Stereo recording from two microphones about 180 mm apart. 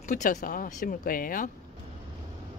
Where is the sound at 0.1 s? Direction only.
45° left (ahead or behind).